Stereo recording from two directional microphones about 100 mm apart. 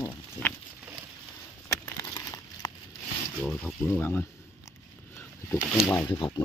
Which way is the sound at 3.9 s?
20° left (ahead or behind).